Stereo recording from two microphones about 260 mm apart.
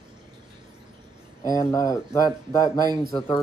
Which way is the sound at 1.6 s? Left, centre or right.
Centre.